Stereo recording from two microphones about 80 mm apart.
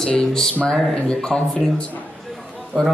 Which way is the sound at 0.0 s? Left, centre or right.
Centre.